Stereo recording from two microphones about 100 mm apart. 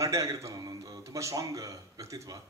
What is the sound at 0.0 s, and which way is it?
A man's voice, 35° right (ahead or behind).